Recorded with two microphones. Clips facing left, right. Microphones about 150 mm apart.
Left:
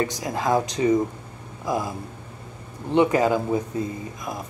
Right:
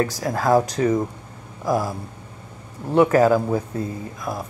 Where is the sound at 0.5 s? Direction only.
40° right (ahead or behind).